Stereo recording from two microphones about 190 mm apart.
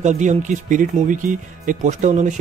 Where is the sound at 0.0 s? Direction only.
40° right (ahead or behind).